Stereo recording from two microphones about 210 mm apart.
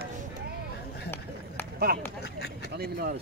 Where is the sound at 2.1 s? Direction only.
50° left (ahead or behind).